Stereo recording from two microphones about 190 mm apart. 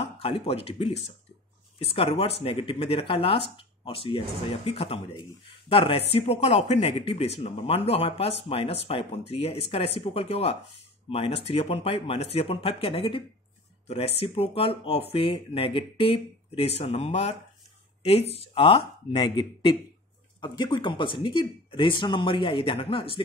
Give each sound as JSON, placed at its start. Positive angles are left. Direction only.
{"t": 0.2, "sound": "speech", "side_deg": 30}